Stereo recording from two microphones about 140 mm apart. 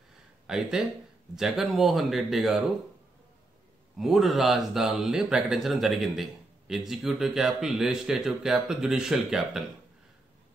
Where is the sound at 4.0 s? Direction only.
Centre (ahead or behind).